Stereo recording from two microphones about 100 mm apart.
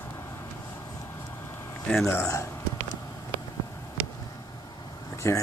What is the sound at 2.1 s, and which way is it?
Speech, 30° left (ahead or behind).